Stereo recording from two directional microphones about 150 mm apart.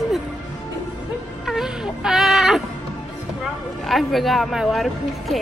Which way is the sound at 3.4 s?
Centre (ahead or behind).